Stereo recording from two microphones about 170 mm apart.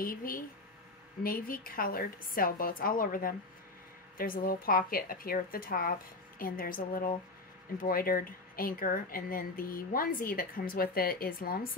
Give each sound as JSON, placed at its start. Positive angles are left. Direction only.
{"t": 0.0, "sound": "speech", "side_deg": 55}